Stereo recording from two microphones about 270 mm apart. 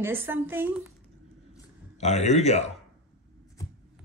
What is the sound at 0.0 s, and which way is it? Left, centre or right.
Speech, centre.